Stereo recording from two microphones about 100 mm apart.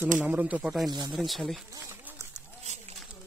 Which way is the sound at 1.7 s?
30° right (ahead or behind).